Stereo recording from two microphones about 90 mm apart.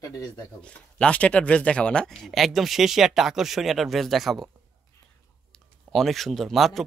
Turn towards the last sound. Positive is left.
turn(degrees=0)  # may be behind; listen again after turning